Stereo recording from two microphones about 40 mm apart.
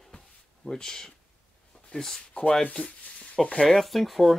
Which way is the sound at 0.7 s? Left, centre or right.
Centre.